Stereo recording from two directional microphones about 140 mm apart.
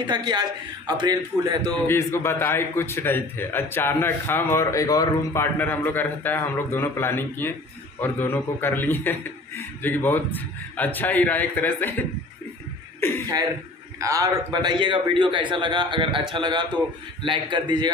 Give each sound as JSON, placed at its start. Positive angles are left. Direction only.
{"t": 0.0, "sound": "speech", "side_deg": -30}
{"t": 1.9, "sound": "a man's voice", "side_deg": 20}
{"t": 13.9, "sound": "a man's voice", "side_deg": -20}